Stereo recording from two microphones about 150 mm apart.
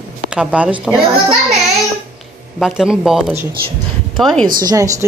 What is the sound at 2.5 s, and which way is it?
A woman's voice, 5° right (ahead or behind).